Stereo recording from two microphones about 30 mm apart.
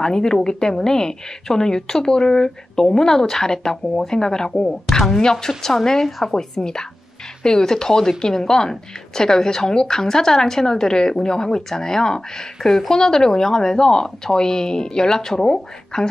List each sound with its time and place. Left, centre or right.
0.0 s a woman's voice: left